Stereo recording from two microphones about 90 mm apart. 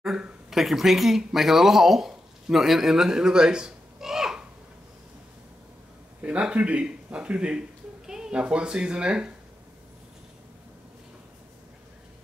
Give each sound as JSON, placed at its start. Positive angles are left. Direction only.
{"t": 0.0, "sound": "speech", "side_deg": -5}
{"t": 6.2, "sound": "speech", "side_deg": -10}